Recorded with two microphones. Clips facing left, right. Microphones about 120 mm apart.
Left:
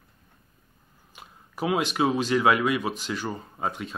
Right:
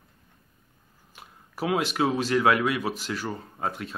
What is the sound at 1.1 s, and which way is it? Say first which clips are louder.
Speech: left 1 dB; centre (ahead or behind).